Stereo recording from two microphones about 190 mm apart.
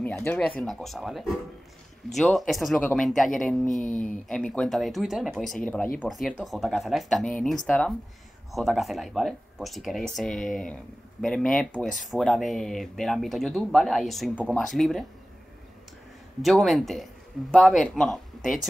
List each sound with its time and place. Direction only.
0.0 s speech: 10° left (ahead or behind)
16.4 s speech: centre (ahead or behind)